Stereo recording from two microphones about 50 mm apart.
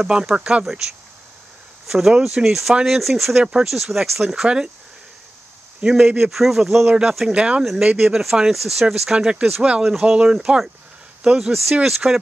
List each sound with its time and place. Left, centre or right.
0.0 s speech: centre
0.4 s speech: right
1.9 s speech: centre
5.8 s speech: centre
7.3 s speech: right
8.1 s speech: centre
9.8 s speech: centre